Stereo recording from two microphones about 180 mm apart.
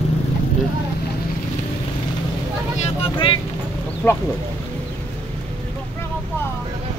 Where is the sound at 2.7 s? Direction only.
30° left (ahead or behind).